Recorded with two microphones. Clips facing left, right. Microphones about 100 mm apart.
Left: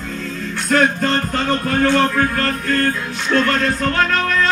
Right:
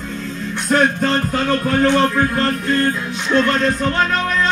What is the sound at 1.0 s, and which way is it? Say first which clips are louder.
Speech: right 1 dB; 5° right (ahead or behind).